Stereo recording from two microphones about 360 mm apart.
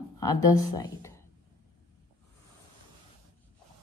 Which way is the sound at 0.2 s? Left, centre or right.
Centre.